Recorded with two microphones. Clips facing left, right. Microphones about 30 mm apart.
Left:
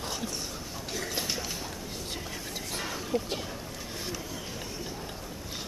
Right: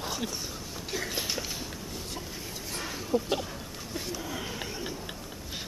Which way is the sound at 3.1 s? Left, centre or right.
Left.